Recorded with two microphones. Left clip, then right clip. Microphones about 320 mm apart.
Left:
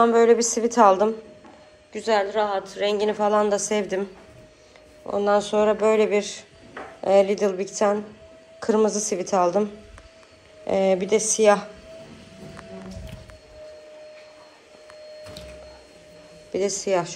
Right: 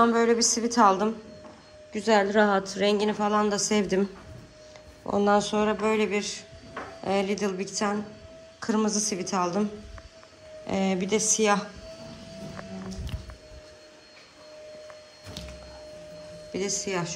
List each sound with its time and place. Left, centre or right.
0.0 s speech: centre
1.9 s a woman's voice: centre
10.7 s speech: centre
16.5 s a woman's voice: centre